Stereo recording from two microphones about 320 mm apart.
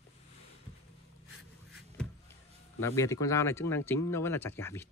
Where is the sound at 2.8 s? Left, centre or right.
Centre.